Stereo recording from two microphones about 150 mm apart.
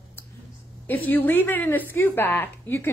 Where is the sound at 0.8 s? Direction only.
10° left (ahead or behind).